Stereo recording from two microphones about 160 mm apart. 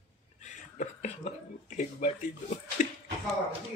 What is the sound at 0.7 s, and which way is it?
Whispering, 45° left (ahead or behind).